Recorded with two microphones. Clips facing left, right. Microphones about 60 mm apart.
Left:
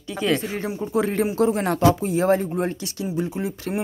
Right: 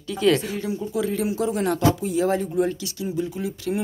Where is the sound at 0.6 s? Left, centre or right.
Left.